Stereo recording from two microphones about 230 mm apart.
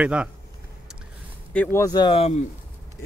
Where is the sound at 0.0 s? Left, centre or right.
Centre.